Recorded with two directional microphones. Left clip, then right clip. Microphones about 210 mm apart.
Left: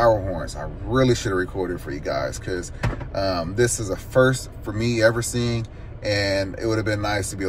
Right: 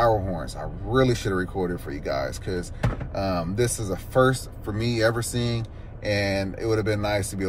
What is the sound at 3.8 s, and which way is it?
Speech, 10° right (ahead or behind).